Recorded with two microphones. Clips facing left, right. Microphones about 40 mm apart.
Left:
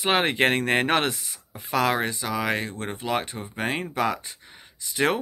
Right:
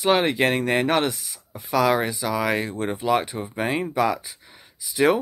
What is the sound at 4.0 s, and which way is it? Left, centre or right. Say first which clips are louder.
Speech: right 2 dB; centre.